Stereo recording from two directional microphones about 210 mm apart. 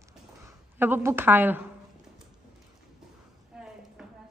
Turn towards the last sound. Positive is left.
turn(degrees=-5)  # may be behind; listen again after turning